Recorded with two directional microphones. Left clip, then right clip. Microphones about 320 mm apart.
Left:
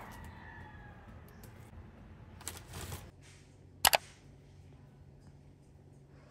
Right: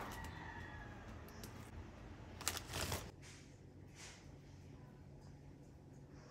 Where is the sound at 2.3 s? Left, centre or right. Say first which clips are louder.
Right 4 dB; centre.